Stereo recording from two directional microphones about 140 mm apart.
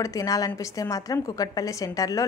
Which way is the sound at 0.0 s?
25° left (ahead or behind).